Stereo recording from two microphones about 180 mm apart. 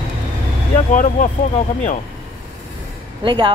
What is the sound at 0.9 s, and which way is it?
Speech, 45° left (ahead or behind).